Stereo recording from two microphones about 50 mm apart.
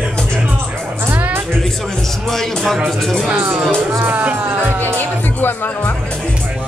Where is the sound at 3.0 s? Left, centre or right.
Centre.